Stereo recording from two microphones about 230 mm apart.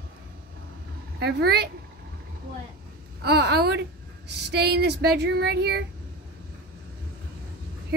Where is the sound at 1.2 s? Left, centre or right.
Right.